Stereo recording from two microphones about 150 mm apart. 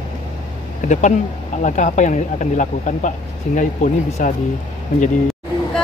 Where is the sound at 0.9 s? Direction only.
55° left (ahead or behind).